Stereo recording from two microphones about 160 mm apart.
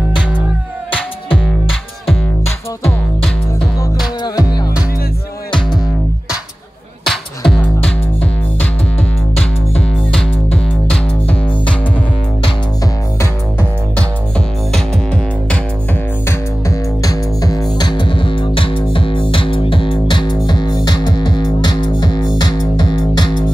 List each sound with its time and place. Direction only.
4.2 s music: 25° left (ahead or behind)
7.1 s music: 5° left (ahead or behind)
9.4 s music: 5° left (ahead or behind)
13.2 s music: 15° left (ahead or behind)
16.3 s music: 20° left (ahead or behind)